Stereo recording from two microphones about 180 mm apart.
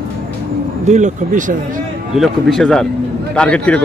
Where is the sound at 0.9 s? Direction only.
45° right (ahead or behind).